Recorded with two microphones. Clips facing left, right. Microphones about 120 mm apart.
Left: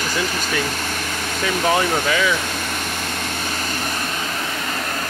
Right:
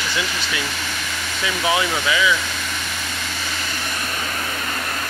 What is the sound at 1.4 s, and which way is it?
Speech, 45° left (ahead or behind).